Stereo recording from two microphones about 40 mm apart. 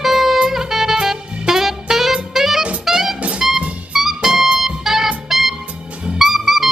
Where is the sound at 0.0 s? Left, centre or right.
Centre.